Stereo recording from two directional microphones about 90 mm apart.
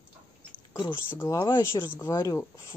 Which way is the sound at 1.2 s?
35° left (ahead or behind).